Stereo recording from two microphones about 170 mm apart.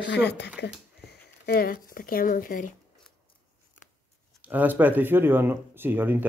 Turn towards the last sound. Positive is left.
turn(degrees=-10)  # may be behind; listen again after turning